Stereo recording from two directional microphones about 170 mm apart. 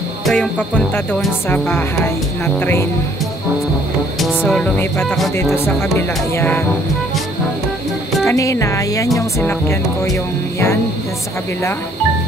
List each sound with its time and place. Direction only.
0.2 s speech: 5° left (ahead or behind)
4.4 s speech: 10° left (ahead or behind)
8.3 s speech: 20° left (ahead or behind)